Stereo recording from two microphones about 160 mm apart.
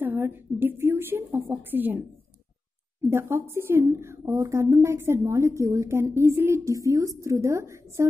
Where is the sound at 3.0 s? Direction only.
15° right (ahead or behind).